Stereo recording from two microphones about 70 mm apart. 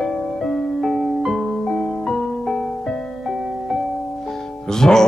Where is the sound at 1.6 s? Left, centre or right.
Centre.